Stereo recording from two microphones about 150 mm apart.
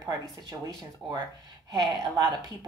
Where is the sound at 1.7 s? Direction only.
25° right (ahead or behind).